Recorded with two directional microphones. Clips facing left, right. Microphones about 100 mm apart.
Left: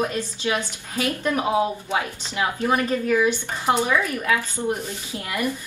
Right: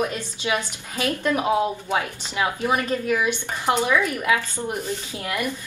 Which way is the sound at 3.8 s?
20° right (ahead or behind).